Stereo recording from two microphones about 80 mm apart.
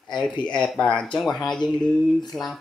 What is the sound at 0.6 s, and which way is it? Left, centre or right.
Speech, centre.